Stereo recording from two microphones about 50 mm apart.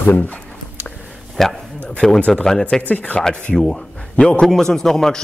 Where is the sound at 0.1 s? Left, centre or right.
Left.